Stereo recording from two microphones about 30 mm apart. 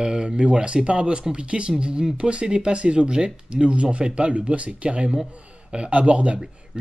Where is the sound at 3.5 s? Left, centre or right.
Right.